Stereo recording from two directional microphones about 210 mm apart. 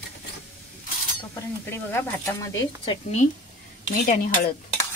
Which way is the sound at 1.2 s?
10° left (ahead or behind).